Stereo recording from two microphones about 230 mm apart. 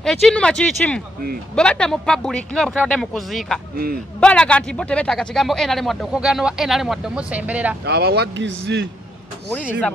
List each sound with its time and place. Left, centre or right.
0.0 s speech: centre
3.7 s a man's voice: right
4.2 s speech: centre
7.8 s speech: right